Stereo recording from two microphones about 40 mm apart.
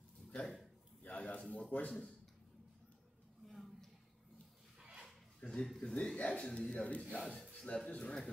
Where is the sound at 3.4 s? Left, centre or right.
Centre.